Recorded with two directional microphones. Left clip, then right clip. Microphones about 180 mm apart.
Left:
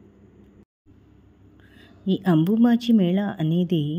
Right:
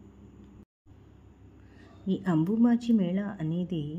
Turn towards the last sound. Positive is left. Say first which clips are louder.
# left 10 dB
turn(degrees=40)  # may be behind; listen again after turning